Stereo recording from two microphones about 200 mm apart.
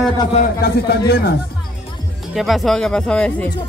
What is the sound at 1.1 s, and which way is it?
Speech, 50° left (ahead or behind).